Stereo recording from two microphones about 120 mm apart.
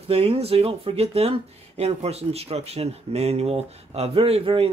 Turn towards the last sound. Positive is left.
turn(degrees=-50)  # may be behind; listen again after turning